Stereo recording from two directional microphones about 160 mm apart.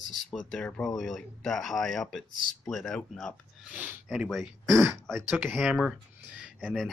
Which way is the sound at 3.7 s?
10° right (ahead or behind).